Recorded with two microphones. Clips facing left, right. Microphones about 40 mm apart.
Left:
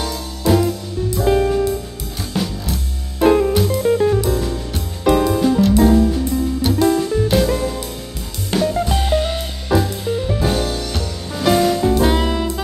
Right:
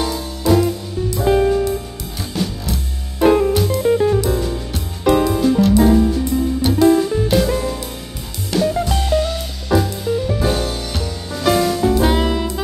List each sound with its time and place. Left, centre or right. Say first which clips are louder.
0.5 s music: right 1 dB; centre
8.5 s drum kit: right 1 dB; centre
8.8 s music: even; centre
9.7 s music: right 1 dB; centre
10.4 s music: even; centre